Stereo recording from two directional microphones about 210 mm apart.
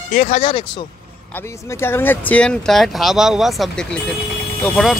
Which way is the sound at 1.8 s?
10° left (ahead or behind).